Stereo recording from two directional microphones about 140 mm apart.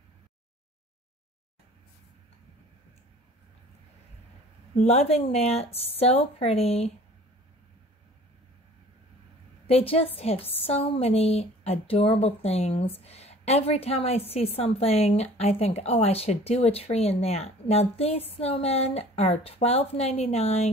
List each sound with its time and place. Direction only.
4.7 s a woman's voice: 50° left (ahead or behind)
9.7 s a woman's voice: 45° left (ahead or behind)